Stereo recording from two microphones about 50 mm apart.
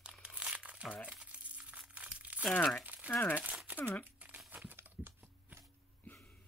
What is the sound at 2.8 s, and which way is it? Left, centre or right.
Crumpling, right.